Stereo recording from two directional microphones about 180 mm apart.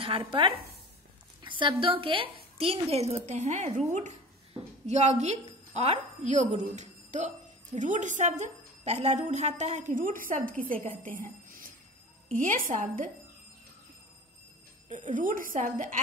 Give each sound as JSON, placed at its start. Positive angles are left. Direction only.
{"t": 0.0, "sound": "a woman's voice", "side_deg": -30}
{"t": 14.9, "sound": "a woman's voice", "side_deg": -45}